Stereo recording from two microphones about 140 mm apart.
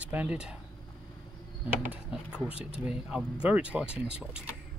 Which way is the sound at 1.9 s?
5° right (ahead or behind).